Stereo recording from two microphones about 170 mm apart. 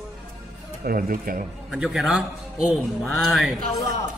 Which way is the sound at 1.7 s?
Centre (ahead or behind).